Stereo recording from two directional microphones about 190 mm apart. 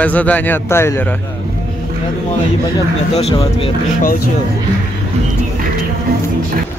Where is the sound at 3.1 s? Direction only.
30° left (ahead or behind).